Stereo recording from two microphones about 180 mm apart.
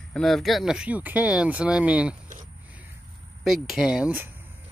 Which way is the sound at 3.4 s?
Centre (ahead or behind).